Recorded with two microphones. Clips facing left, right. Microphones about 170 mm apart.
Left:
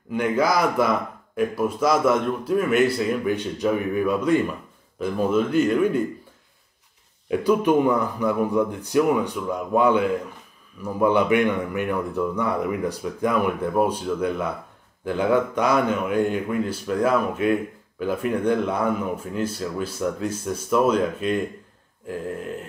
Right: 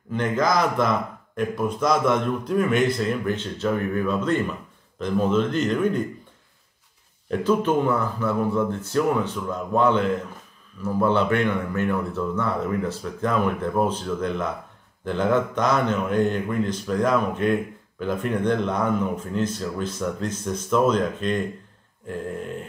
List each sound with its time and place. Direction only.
0.1 s speech: 10° left (ahead or behind)
7.2 s speech: 15° left (ahead or behind)
22.0 s grunt: 5° left (ahead or behind)